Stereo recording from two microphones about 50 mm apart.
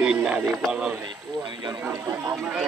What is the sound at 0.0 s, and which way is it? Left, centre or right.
Radio, centre.